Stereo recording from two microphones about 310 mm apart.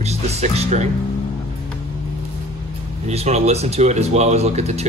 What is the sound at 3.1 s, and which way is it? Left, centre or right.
Speech, centre.